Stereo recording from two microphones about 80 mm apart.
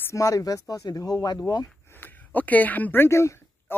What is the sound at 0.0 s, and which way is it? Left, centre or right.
Speech, left.